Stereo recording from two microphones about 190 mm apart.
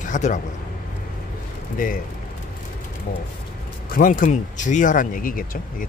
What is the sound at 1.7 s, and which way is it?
Speech, 45° left (ahead or behind).